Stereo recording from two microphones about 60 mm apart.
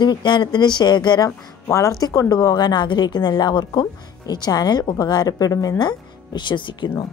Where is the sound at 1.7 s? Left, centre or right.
Left.